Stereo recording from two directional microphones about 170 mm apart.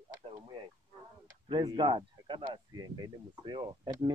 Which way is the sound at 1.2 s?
20° right (ahead or behind).